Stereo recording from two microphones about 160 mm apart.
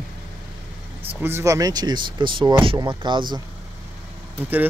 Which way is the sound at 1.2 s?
15° right (ahead or behind).